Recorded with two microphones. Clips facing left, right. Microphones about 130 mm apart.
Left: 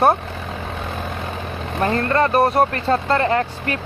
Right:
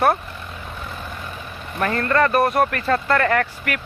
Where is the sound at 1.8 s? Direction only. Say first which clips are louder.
Left 1 dB; 30° left (ahead or behind).